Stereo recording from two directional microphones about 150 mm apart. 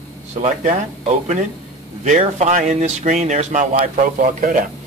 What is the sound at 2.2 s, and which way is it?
Speech, 50° right (ahead or behind).